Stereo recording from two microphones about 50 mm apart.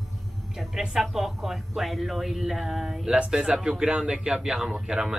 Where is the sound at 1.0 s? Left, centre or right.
Centre.